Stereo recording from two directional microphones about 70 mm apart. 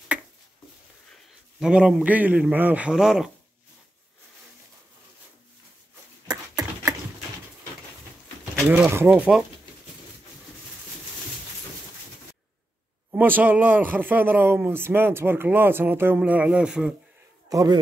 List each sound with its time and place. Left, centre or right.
1.6 s a man's voice: centre
2.9 s a man's voice: centre
6.6 s horse: right
8.6 s a man's voice: right
13.1 s a man's voice: right
16.3 s a man's voice: centre
17.5 s a man's voice: right